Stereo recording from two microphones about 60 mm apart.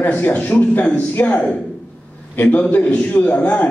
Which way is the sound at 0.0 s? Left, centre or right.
Left.